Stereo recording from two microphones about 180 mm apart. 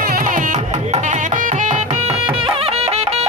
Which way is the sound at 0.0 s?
50° right (ahead or behind).